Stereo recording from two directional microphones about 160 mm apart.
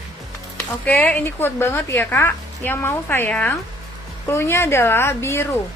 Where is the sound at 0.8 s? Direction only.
10° left (ahead or behind).